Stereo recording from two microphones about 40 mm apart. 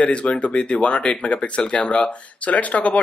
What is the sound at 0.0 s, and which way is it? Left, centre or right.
Speech, left.